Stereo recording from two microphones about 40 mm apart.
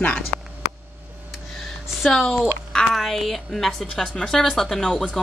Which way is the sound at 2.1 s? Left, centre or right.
Centre.